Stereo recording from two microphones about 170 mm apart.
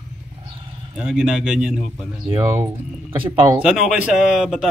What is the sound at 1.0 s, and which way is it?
Speech, 5° right (ahead or behind).